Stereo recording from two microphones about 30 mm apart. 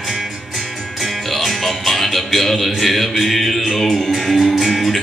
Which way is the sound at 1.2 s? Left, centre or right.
Centre.